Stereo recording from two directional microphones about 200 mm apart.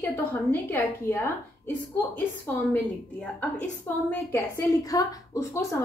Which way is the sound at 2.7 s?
5° left (ahead or behind).